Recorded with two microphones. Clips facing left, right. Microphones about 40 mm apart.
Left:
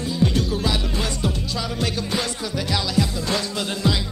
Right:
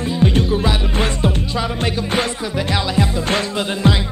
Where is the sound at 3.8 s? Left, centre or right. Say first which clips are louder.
Right 5 dB; right.